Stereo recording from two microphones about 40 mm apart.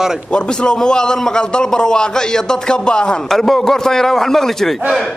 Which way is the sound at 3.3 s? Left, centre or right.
Centre.